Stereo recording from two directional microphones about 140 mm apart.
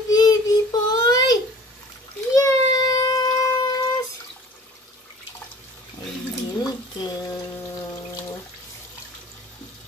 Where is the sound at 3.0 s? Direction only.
25° left (ahead or behind).